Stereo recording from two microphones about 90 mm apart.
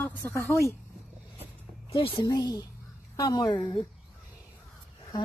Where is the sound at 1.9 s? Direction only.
90° left.